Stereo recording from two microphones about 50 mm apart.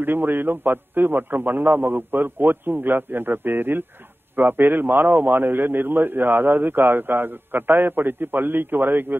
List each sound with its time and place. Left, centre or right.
0.0 s a man's voice: right